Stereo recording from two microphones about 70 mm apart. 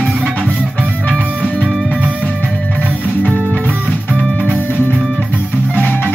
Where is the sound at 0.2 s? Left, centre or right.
Centre.